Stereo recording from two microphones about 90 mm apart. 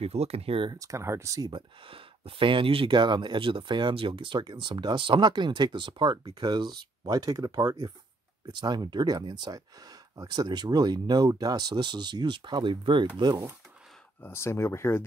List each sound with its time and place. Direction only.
0.3 s speech: 90° right
0.7 s speech: 40° right (ahead or behind)
1.5 s speech: 90° right; by 13.0 s 65° right (ahead or behind)
14.2 s speech: 30° left (ahead or behind)